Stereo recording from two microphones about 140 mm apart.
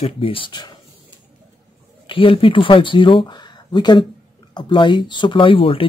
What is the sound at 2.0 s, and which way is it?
Speech, 40° left (ahead or behind).